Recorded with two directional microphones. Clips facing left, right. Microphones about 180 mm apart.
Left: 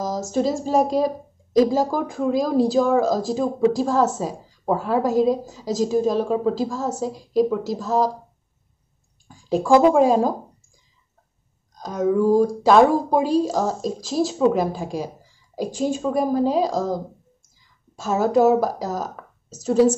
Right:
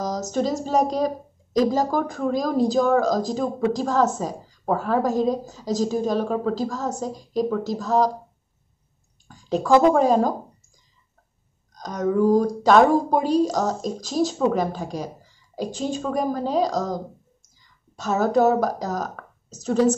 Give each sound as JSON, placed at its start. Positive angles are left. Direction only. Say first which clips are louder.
{"t": 0.3, "sound": "speech", "louder": "left 2 dB", "side_deg": 10}
{"t": 9.3, "sound": "speech", "louder": "left 1 dB", "side_deg": 10}
{"t": 11.8, "sound": "speech", "louder": "left 1 dB", "side_deg": 5}